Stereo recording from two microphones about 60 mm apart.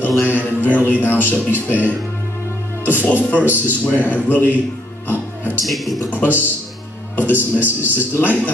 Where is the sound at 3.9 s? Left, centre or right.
Left.